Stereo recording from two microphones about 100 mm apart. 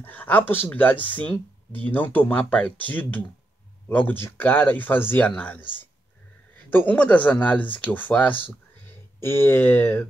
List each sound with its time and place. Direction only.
0.0 s speech: 15° left (ahead or behind)
6.7 s speech: 20° left (ahead or behind)